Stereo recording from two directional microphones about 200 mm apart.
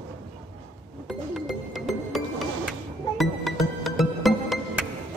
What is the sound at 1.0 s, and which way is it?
Music, centre (ahead or behind).